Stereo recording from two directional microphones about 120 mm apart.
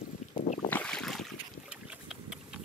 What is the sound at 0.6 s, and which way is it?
Boat, 15° left (ahead or behind).